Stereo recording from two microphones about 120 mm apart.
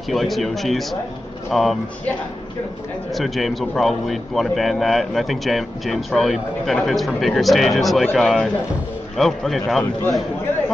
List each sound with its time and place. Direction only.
0.1 s speech: centre (ahead or behind)
3.2 s speech: centre (ahead or behind)